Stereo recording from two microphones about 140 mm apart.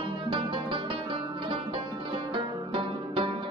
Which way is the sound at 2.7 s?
35° right (ahead or behind).